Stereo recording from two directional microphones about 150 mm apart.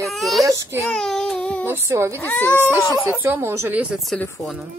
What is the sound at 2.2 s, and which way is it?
Speech, 15° left (ahead or behind).